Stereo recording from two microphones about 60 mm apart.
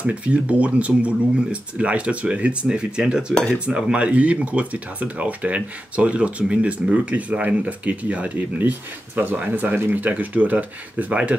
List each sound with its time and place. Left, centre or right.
0.0 s speech: right